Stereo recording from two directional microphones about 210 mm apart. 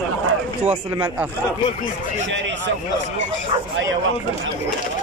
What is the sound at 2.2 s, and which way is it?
Speech, 60° right (ahead or behind).